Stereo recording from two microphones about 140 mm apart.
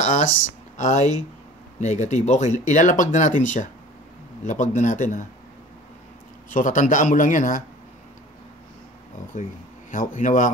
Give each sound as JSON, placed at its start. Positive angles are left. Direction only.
{"t": 0.0, "sound": "speech", "side_deg": 60}
{"t": 6.5, "sound": "speech", "side_deg": 65}
{"t": 9.3, "sound": "speech", "side_deg": 70}